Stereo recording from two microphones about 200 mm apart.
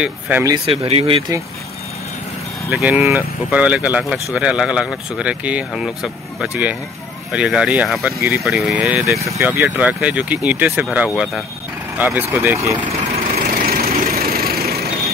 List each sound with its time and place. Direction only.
0.0 s speech: 10° right (ahead or behind)
0.7 s speech: 30° right (ahead or behind)
2.7 s speech: 5° right (ahead or behind)
13.6 s vehicle: 50° right (ahead or behind)